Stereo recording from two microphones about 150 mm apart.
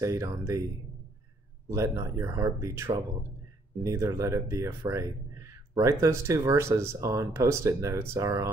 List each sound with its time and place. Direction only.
0.0 s speech: 20° right (ahead or behind)
1.7 s speech: 20° right (ahead or behind)